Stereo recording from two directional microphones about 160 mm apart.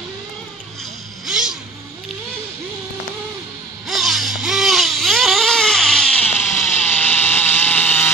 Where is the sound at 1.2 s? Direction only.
5° right (ahead or behind).